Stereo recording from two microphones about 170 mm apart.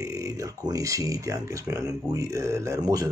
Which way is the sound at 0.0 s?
20° right (ahead or behind).